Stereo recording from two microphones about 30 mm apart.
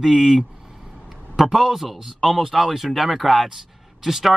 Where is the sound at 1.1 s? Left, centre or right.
Centre.